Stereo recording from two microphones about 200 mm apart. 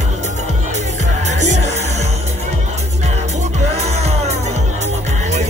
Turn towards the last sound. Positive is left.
turn(degrees=-35)  # may be behind; listen again after turning